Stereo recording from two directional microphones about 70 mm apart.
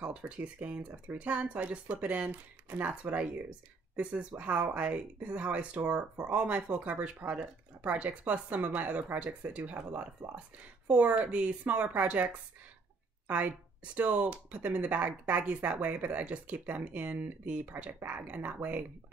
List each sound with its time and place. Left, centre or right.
0.0 s speech: centre
13.3 s speech: right